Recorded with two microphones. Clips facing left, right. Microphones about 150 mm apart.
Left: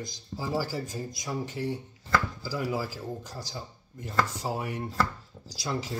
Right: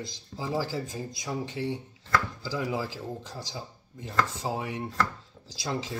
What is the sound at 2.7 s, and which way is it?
Speech, 20° right (ahead or behind).